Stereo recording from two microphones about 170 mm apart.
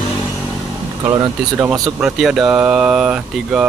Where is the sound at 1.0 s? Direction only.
20° right (ahead or behind).